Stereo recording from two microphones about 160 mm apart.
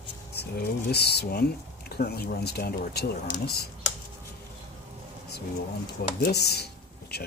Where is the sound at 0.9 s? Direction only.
90° left.